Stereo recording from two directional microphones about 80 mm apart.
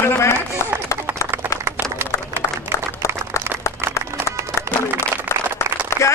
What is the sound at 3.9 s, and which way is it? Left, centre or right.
Run, left.